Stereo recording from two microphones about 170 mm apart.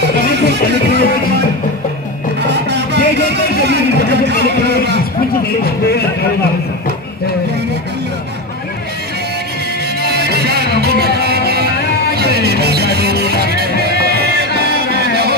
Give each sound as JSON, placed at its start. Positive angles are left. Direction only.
{"t": 2.5, "sound": "music", "side_deg": -85}
{"t": 10.0, "sound": "music", "side_deg": -70}